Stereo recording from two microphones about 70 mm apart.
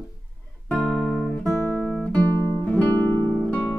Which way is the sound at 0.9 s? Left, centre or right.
Centre.